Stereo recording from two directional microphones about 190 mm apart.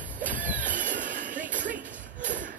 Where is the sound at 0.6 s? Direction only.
45° right (ahead or behind).